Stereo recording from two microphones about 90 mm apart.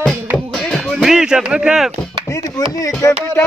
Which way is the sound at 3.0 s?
40° left (ahead or behind).